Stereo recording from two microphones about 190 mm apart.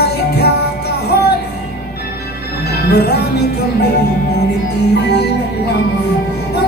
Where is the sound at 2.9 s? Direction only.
60° left (ahead or behind).